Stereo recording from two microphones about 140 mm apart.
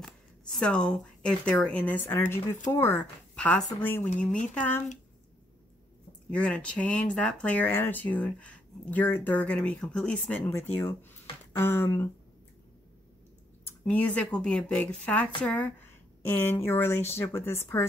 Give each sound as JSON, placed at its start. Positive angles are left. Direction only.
{"t": 0.0, "sound": "speech", "side_deg": 5}
{"t": 6.3, "sound": "speech", "side_deg": 10}
{"t": 13.7, "sound": "speech", "side_deg": 10}